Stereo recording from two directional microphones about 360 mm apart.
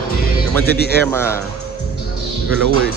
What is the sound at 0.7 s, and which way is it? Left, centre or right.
Speech, left.